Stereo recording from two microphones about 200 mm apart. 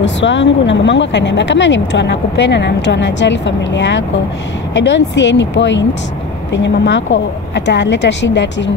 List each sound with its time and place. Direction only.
0.0 s speech: 65° left (ahead or behind)